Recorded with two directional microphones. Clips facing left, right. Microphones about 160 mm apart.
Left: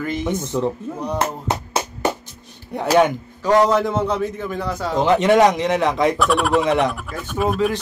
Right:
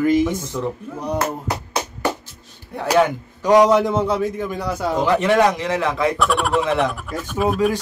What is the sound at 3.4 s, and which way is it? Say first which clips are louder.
A man's voice: right 2 dB; 15° right (ahead or behind).